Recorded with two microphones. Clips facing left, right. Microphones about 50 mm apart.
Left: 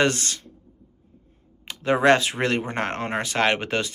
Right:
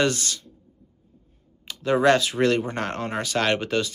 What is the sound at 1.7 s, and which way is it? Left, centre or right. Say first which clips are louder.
Speech: left 1 dB; left.